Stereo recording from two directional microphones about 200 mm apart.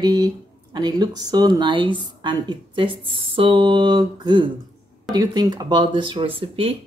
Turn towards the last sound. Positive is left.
turn(degrees=-25)  # may be behind; listen again after turning